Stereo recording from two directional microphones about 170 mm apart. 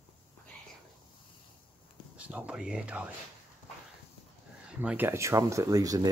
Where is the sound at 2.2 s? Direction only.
5° right (ahead or behind).